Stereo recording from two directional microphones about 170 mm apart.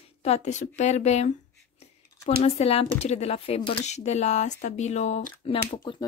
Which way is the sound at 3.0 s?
40° left (ahead or behind).